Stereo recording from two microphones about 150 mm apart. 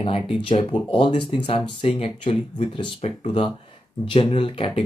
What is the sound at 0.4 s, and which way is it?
Speech, 35° left (ahead or behind).